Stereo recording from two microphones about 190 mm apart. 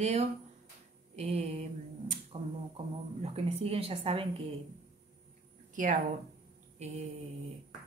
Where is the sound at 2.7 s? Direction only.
30° right (ahead or behind).